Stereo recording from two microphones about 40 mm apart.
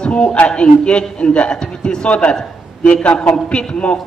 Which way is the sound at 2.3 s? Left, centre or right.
Centre.